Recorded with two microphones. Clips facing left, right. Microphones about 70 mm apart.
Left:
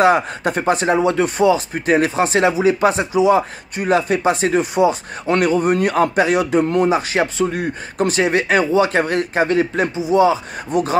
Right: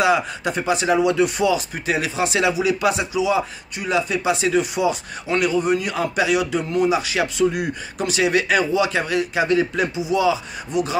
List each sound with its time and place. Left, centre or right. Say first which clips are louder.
0.0 s a man's voice: left 4 dB; left
5.2 s a man's voice: left 4 dB; left